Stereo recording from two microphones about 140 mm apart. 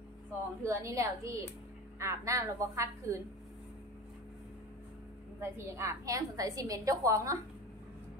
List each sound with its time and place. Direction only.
0.6 s a woman's voice: 20° right (ahead or behind)
5.4 s a woman's voice: 20° right (ahead or behind)